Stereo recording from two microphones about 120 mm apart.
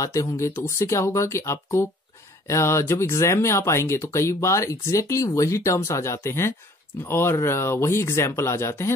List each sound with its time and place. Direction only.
0.0 s speech: 25° left (ahead or behind)